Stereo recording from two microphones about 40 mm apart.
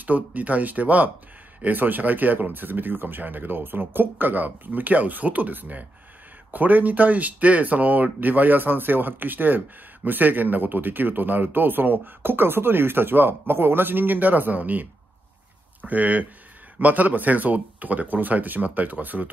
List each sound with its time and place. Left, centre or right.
0.0 s speech: right